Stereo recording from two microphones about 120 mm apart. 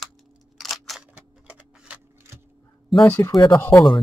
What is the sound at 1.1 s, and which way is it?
Vehicle, 10° right (ahead or behind).